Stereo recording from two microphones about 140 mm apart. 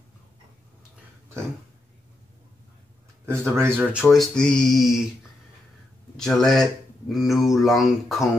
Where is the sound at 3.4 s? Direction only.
20° right (ahead or behind).